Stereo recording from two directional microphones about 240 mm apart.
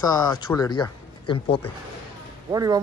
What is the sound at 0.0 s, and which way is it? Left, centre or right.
Speech, centre.